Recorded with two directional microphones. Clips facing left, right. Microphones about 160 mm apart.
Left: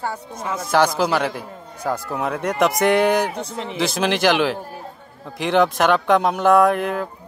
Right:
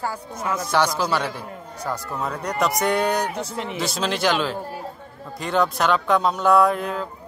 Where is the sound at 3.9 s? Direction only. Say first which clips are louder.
Left 4 dB; 70° left (ahead or behind).